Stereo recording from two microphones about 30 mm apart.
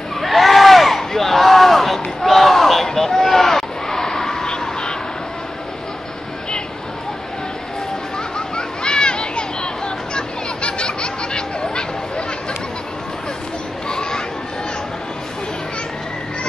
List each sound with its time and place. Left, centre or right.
0.2 s crowd: centre
8.4 s children playing: left
10.6 s snicker: left
13.8 s children playing: left